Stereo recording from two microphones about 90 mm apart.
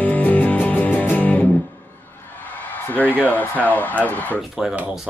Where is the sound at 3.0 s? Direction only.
20° left (ahead or behind).